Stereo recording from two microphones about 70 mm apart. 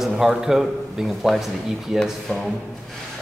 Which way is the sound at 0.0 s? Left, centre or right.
Centre.